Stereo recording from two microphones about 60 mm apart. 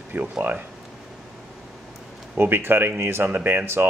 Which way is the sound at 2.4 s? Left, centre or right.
Right.